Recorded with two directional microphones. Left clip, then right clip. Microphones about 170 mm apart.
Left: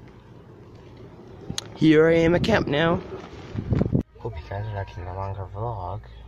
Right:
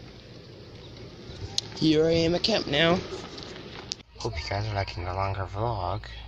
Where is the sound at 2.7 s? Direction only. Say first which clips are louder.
Left 1 dB; 25° left (ahead or behind).